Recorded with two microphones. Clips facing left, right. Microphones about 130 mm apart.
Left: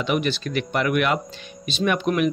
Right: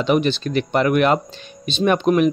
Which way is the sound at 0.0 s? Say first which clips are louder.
Right 5 dB; 30° right (ahead or behind).